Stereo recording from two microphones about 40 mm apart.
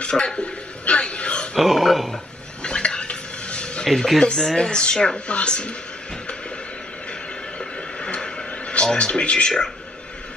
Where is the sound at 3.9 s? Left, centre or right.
Centre.